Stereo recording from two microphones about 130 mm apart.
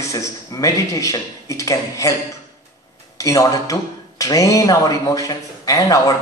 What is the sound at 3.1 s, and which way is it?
Speech, 25° left (ahead or behind).